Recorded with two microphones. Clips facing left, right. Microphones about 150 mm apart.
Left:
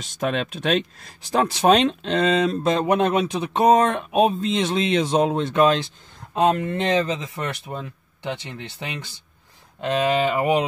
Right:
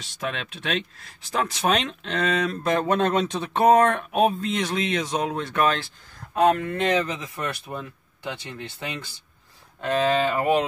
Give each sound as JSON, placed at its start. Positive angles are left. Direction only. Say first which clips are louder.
{"t": 0.0, "sound": "speech", "louder": "left 7 dB", "side_deg": 45}